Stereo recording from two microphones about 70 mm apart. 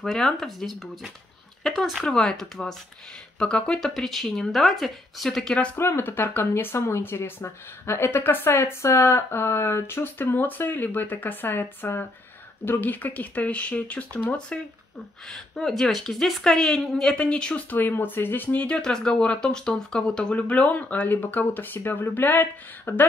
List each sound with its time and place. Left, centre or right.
0.0 s speech: centre
2.0 s a woman's voice: centre
5.8 s a woman's voice: left; by 17.6 s centre
17.6 s speech: left